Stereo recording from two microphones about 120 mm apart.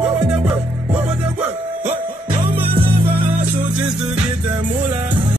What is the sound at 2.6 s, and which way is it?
Music, 50° right (ahead or behind).